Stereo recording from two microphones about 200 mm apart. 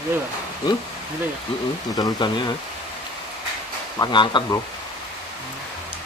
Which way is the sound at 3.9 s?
25° left (ahead or behind).